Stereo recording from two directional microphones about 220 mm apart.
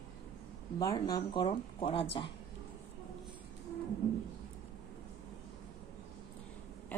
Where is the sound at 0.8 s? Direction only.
15° left (ahead or behind).